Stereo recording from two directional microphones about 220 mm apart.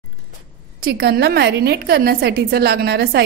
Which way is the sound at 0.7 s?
45° right (ahead or behind).